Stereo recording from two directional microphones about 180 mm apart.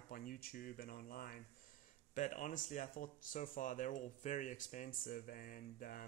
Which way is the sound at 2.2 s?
45° left (ahead or behind).